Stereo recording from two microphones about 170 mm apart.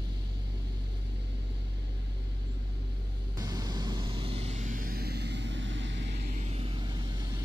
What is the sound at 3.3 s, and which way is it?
Vehicle, 20° right (ahead or behind).